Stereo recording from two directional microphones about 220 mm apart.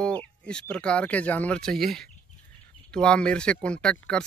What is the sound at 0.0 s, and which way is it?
A man's voice, 5° left (ahead or behind).